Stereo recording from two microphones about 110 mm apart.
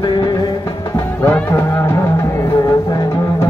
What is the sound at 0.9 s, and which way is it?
Music, 20° left (ahead or behind).